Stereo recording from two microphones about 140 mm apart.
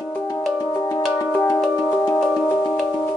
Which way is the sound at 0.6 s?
20° left (ahead or behind).